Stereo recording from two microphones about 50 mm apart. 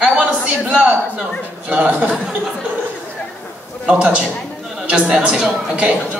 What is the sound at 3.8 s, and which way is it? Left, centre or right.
Speech, centre.